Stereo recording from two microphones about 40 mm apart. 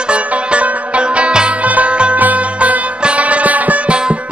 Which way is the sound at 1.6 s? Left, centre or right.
Right.